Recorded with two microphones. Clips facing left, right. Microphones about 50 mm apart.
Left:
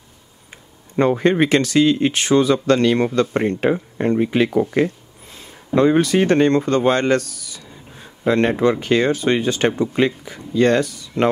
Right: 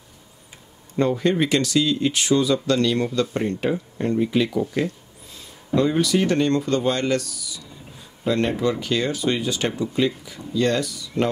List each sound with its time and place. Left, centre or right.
0.9 s speech: left